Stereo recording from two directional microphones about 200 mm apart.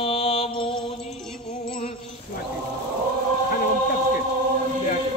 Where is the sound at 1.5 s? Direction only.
35° left (ahead or behind).